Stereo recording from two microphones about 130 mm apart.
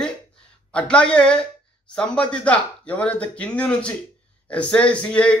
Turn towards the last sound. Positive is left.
turn(degrees=10)  # may be behind; listen again after turning